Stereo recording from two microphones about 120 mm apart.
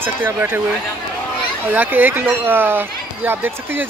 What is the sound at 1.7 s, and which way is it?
Speech, 15° right (ahead or behind).